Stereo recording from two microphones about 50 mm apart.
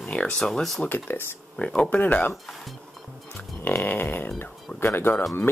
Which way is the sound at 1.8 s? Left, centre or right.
Left.